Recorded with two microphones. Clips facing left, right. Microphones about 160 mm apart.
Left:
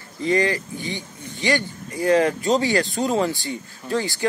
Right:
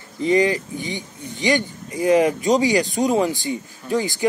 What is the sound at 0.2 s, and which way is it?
A man's voice, 20° right (ahead or behind).